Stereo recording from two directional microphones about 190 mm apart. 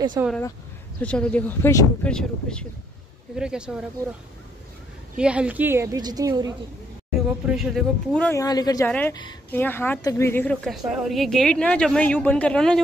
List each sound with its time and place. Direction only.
0.2 s a woman's voice: 15° right (ahead or behind)
1.0 s speech: 5° left (ahead or behind)
5.1 s a woman's voice: 5° right (ahead or behind)
7.2 s speech: centre (ahead or behind)
8.4 s speech: 20° left (ahead or behind)
8.8 s speech: 10° left (ahead or behind)